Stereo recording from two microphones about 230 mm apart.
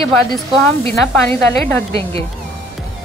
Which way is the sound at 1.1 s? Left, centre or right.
Centre.